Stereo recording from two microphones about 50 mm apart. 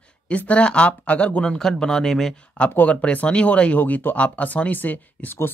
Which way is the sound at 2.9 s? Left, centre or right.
Left.